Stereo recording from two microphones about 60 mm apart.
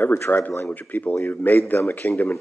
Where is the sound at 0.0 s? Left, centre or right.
Left.